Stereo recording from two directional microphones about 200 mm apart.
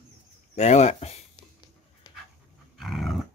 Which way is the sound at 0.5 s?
35° left (ahead or behind).